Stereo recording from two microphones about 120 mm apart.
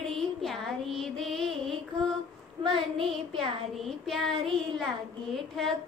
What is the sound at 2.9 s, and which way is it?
Child singing, centre (ahead or behind).